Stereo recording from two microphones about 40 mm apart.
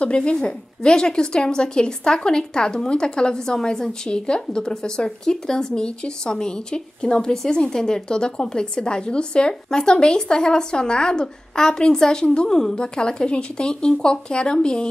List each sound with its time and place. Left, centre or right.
0.0 s a woman's voice: left